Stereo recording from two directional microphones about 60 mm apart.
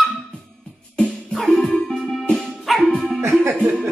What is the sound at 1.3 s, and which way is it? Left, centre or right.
Music, centre.